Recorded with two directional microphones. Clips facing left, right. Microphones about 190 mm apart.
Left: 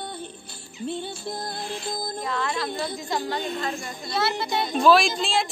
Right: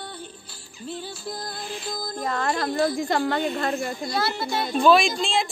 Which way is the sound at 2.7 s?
55° right (ahead or behind).